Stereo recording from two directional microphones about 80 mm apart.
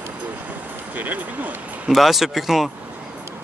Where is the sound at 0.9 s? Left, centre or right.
Right.